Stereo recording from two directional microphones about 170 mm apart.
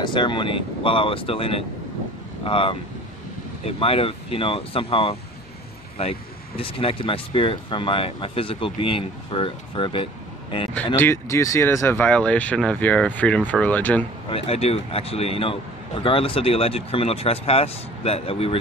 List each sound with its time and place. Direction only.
0.0 s speech: 25° left (ahead or behind)
11.0 s speech: 15° left (ahead or behind)
14.3 s speech: 35° left (ahead or behind)